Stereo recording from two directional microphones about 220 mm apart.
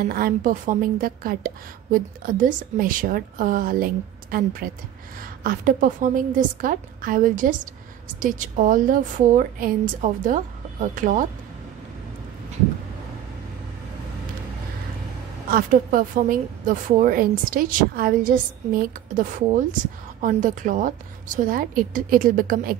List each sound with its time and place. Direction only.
0.0 s a woman's voice: 40° right (ahead or behind)
15.5 s a woman's voice: 35° right (ahead or behind)